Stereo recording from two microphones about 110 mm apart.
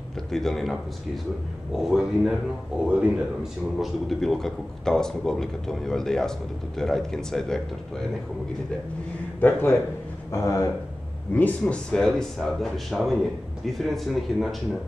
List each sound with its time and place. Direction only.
0.3 s a man's voice: 5° left (ahead or behind)
9.4 s speech: 20° left (ahead or behind)
10.3 s speech: 30° left (ahead or behind)
11.6 s a man's voice: 5° left (ahead or behind)